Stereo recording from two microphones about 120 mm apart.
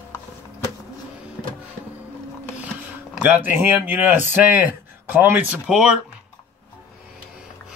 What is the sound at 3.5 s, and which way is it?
Speech, 15° right (ahead or behind).